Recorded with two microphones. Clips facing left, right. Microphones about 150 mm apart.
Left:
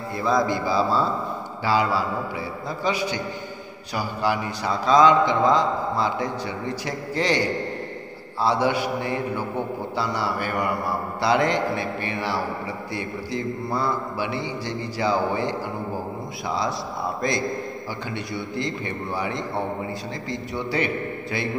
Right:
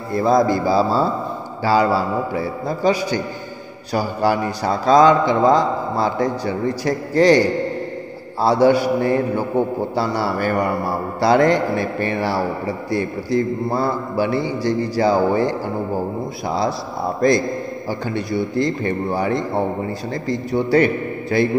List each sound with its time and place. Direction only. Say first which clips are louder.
0.1 s a man's voice: right 7 dB; 40° right (ahead or behind)
17.8 s a man's voice: right 7 dB; 40° right (ahead or behind)